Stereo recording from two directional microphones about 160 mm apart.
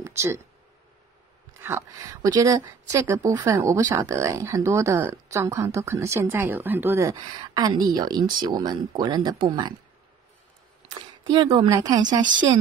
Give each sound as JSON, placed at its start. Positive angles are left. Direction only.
{"t": 0.0, "sound": "a sound", "side_deg": -15}
{"t": 1.6, "sound": "speech", "side_deg": -15}
{"t": 11.0, "sound": "speech", "side_deg": -30}